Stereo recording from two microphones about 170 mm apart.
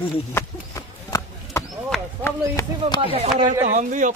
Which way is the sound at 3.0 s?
35° right (ahead or behind).